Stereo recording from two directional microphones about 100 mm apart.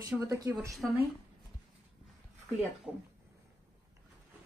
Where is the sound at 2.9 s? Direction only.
5° right (ahead or behind).